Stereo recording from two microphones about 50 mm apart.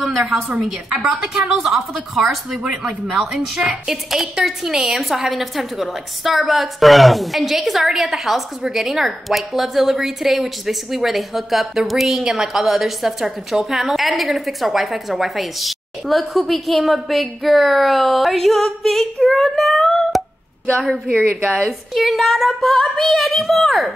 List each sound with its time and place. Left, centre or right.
0.2 s a woman's voice: right
0.9 s a woman's voice: centre
2.5 s a woman's voice: centre
21.5 s a woman's voice: centre